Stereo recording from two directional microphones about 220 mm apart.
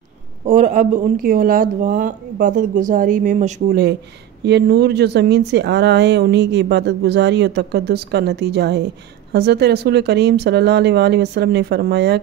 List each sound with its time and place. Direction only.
0.5 s speech: 35° right (ahead or behind)
4.5 s speech: 50° right (ahead or behind)